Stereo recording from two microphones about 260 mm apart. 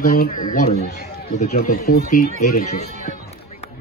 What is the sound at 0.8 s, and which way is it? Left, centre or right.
Speech, left.